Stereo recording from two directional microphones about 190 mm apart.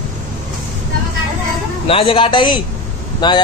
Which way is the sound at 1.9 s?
30° left (ahead or behind).